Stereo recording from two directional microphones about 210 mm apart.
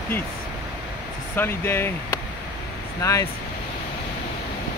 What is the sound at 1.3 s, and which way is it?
Speech, 10° left (ahead or behind).